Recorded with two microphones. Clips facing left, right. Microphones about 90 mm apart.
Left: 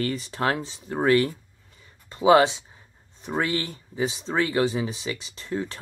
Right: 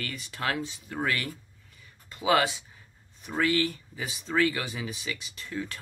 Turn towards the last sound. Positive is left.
turn(degrees=30)  # may be behind; listen again after turning